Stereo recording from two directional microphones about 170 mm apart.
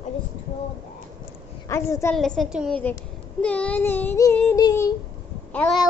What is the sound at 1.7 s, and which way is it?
Child singing, 15° left (ahead or behind).